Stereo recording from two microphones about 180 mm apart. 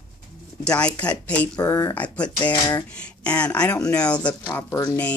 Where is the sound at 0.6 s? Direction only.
5° left (ahead or behind).